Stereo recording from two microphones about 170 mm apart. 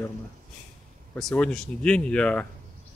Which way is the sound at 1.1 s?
5° left (ahead or behind).